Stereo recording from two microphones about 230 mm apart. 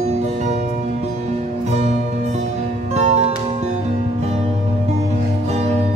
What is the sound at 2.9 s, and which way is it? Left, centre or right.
Music, right.